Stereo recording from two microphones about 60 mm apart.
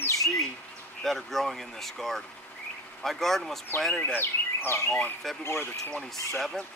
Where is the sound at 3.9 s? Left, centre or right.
Left.